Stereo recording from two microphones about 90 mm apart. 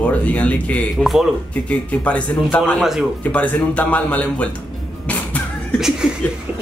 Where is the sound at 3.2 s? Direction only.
15° left (ahead or behind).